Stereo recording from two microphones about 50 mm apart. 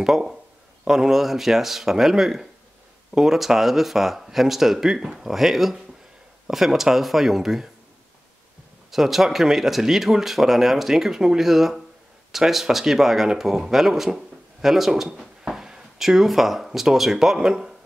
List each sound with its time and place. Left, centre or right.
0.0 s speech: centre
8.9 s speech: centre